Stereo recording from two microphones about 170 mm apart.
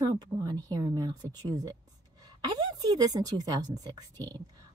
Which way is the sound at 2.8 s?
20° right (ahead or behind).